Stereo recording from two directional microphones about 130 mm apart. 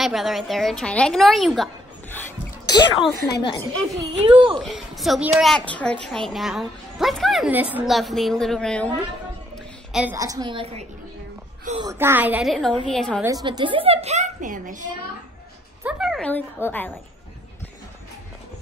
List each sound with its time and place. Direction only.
0.0 s a woman's voice: centre (ahead or behind)
2.7 s speech: 35° left (ahead or behind)
4.2 s a child's voice: 40° right (ahead or behind)
4.6 s a woman's voice: centre (ahead or behind)
7.5 s a woman's voice: 15° right (ahead or behind)
7.8 s a woman's voice: centre (ahead or behind)
10.1 s a woman's voice: 25° right (ahead or behind)
10.5 s a woman's voice: 45° right (ahead or behind)
11.8 s a woman's voice: 20° right (ahead or behind)
12.4 s a woman's voice: 5° left (ahead or behind)
13.2 s a woman's voice: 25° right (ahead or behind)
13.5 s a woman's voice: 40° right (ahead or behind); by 14.9 s 85° right
15.8 s a woman's voice: 5° right (ahead or behind)
16.3 s speech: 15° left (ahead or behind)